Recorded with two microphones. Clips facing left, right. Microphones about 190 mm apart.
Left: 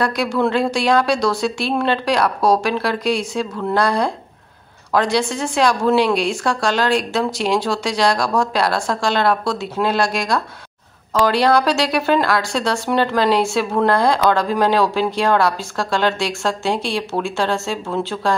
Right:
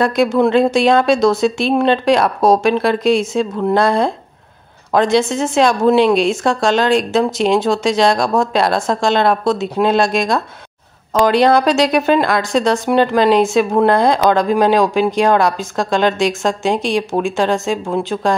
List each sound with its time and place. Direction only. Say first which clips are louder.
0.0 s speech: right 5 dB; 20° right (ahead or behind)